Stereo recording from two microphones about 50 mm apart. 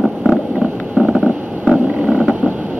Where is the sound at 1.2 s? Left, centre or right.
Centre.